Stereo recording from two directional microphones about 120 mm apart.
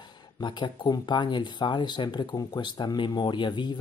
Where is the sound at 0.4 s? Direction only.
40° left (ahead or behind).